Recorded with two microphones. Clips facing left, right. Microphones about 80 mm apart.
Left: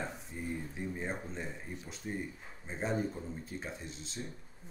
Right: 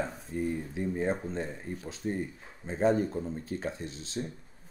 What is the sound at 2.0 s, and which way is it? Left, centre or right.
Speech, right.